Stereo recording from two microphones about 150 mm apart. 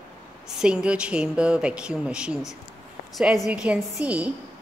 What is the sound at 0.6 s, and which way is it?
Speech, 5° right (ahead or behind).